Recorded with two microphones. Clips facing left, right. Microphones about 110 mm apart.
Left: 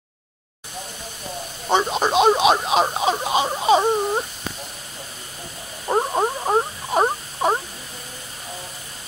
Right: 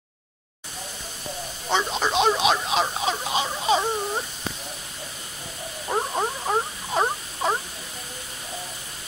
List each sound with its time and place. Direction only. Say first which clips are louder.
1.7 s speech: left 5 dB; 20° left (ahead or behind)
5.9 s frog: left 5 dB; 20° left (ahead or behind)